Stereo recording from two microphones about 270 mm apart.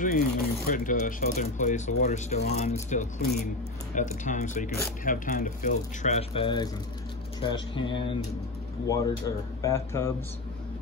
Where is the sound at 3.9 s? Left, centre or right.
Left.